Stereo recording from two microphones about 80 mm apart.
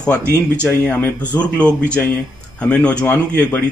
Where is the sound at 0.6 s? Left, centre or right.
Left.